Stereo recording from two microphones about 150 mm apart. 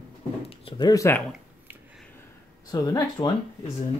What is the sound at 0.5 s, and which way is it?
Speech, 35° left (ahead or behind).